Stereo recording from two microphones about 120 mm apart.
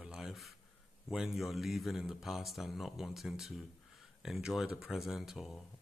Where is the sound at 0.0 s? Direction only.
5° right (ahead or behind).